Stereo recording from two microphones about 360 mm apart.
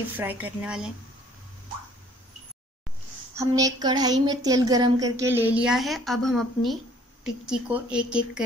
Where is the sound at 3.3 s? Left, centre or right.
Centre.